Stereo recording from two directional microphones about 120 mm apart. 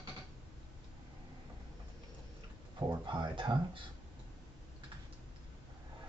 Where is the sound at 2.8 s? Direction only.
35° right (ahead or behind).